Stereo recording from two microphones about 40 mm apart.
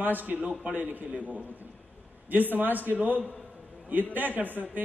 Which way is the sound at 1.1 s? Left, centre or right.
Right.